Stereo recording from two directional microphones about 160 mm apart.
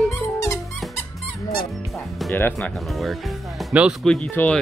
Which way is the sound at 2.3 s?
15° left (ahead or behind).